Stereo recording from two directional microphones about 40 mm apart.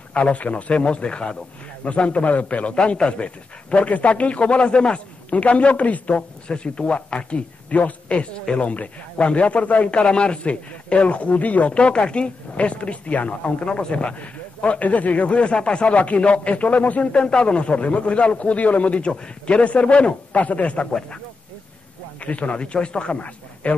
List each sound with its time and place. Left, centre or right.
0.1 s a man's voice: left
1.9 s a man's voice: left
14.2 s speech: left
22.2 s a man's voice: left